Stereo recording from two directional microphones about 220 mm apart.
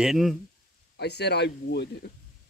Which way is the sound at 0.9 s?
50° left (ahead or behind).